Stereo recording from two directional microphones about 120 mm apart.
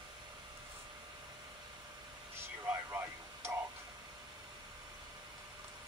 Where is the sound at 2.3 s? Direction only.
20° right (ahead or behind).